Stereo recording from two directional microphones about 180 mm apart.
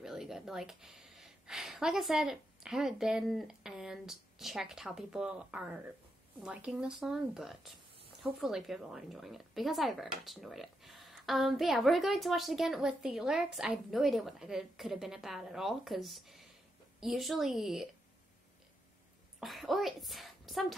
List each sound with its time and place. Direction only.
0.0 s a woman's voice: centre (ahead or behind)
19.4 s a woman's voice: centre (ahead or behind)